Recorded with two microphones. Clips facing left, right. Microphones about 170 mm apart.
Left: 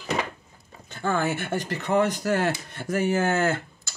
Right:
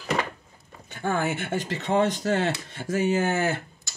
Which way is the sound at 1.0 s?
15° right (ahead or behind).